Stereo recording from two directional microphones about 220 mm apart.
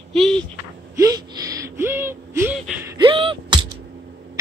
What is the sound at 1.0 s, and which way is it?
Speech, 15° right (ahead or behind).